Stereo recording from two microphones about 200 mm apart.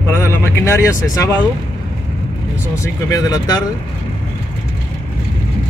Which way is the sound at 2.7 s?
15° left (ahead or behind).